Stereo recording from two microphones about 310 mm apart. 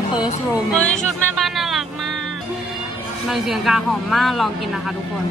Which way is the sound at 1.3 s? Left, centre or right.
Centre.